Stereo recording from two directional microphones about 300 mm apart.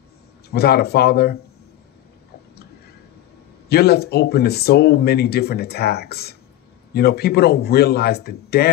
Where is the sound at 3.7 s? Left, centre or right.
Left.